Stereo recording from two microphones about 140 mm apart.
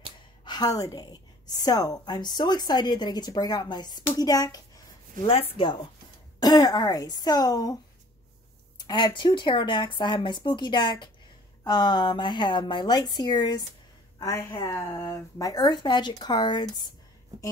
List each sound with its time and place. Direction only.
0.5 s a woman's voice: 25° left (ahead or behind)
8.7 s a woman's voice: 30° left (ahead or behind)